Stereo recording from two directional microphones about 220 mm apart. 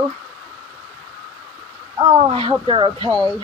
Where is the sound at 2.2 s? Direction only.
25° right (ahead or behind).